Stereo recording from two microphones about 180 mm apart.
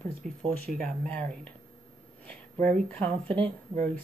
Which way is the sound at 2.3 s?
5° left (ahead or behind).